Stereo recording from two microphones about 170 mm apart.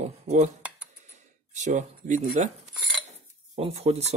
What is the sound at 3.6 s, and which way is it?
Cutlery, 40° right (ahead or behind).